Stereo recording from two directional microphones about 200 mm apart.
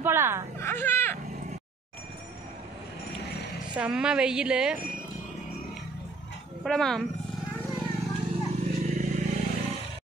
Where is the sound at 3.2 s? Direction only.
55° left (ahead or behind).